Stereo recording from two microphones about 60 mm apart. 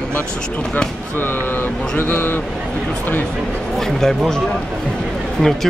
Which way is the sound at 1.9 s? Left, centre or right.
Left.